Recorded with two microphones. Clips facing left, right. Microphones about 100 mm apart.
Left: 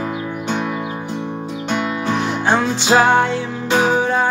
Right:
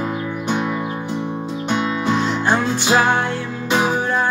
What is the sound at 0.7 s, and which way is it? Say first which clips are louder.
Music: even; 10° left (ahead or behind).